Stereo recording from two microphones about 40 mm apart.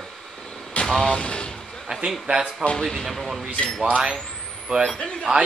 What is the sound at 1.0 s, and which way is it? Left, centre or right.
Speech, left.